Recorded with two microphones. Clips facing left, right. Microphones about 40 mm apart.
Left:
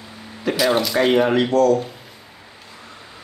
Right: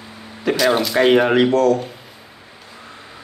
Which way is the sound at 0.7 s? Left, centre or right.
Centre.